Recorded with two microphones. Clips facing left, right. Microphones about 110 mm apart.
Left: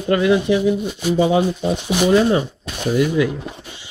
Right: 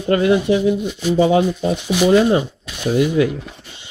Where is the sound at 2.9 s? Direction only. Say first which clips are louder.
Right 1 dB; 35° right (ahead or behind).